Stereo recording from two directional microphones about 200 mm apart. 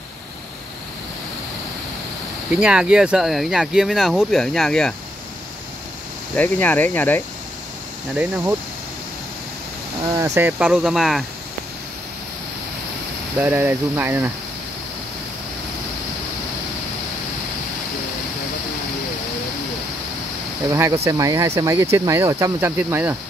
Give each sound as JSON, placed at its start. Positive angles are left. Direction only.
{"t": 2.5, "sound": "speech", "side_deg": -5}
{"t": 6.3, "sound": "speech", "side_deg": 10}
{"t": 8.1, "sound": "speech", "side_deg": -10}
{"t": 10.1, "sound": "speech", "side_deg": -15}
{"t": 13.4, "sound": "speech", "side_deg": -10}
{"t": 21.0, "sound": "speech", "side_deg": -15}